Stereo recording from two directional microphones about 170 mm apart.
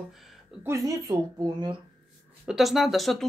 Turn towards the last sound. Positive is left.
turn(degrees=0)  # may be behind; listen again after turning